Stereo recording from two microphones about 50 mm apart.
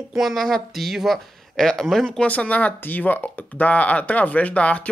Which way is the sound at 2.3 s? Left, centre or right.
Left.